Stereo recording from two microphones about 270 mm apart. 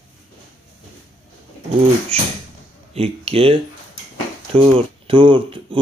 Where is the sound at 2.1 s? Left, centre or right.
Right.